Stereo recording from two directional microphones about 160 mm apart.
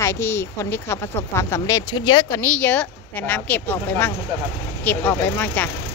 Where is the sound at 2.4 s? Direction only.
10° left (ahead or behind).